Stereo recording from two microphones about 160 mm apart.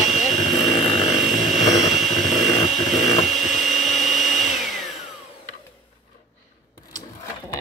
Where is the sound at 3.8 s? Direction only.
45° left (ahead or behind).